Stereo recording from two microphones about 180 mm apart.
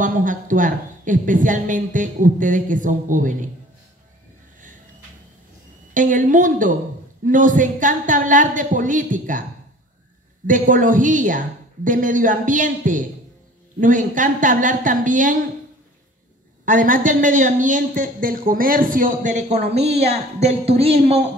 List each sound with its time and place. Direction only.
0.0 s speech: 45° right (ahead or behind)
5.9 s speech: 45° right (ahead or behind)
10.4 s speech: 45° right (ahead or behind)
16.6 s speech: 50° right (ahead or behind)